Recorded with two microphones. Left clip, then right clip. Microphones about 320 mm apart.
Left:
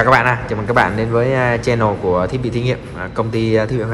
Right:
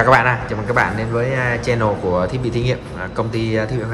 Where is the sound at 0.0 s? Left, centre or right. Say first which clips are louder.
Left 1 dB; centre.